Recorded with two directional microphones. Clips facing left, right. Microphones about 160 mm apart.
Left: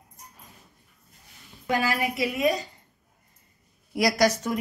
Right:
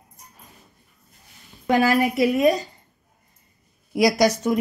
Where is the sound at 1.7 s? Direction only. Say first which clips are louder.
Right 7 dB; 55° right (ahead or behind).